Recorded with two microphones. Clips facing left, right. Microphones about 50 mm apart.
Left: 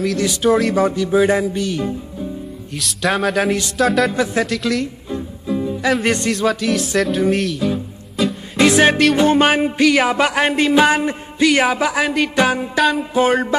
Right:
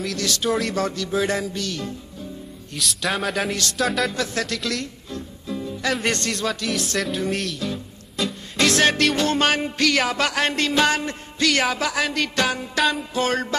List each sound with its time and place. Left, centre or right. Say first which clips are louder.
0.4 s a man's voice: left 9 dB; centre
0.7 s music: left 8 dB; centre
2.7 s a man's voice: left 5 dB; centre
4.1 s speech: left 7 dB; centre
4.5 s music: left 7 dB; centre
5.1 s music: left 8 dB; centre
5.8 s music: left 5 dB; centre
6.3 s a man's voice: left 7 dB; centre
8.2 s music: left 7 dB; centre
8.5 s music: left 6 dB; centre
12.7 s a man's voice: left 4 dB; centre
13.1 s music: left 7 dB; centre